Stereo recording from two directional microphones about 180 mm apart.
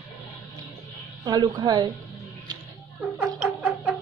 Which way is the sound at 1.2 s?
20° right (ahead or behind).